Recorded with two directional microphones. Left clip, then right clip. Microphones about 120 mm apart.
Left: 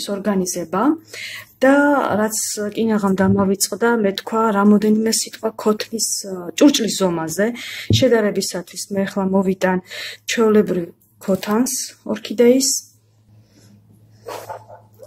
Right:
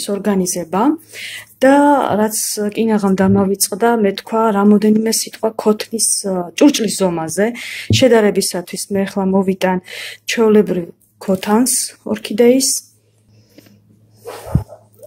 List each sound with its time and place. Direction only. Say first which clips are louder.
0.0 s speech: right 3 dB; 35° right (ahead or behind); by 7.9 s 20° right (ahead or behind)
7.9 s speech: right 5 dB; 40° right (ahead or behind)